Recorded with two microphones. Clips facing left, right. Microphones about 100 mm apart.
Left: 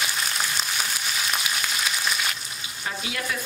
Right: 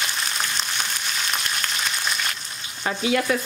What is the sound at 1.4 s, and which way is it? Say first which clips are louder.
Frying: even; 5° left (ahead or behind).